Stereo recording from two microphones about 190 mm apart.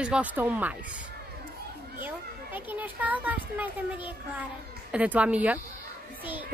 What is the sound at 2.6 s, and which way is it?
Speech, 10° right (ahead or behind).